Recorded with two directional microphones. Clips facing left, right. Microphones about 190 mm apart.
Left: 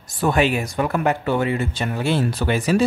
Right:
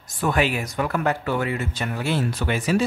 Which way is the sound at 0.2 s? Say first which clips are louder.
Left 3 dB; 25° left (ahead or behind).